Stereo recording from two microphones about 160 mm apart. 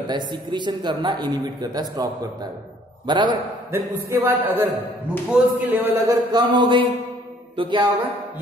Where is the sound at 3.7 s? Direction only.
15° right (ahead or behind).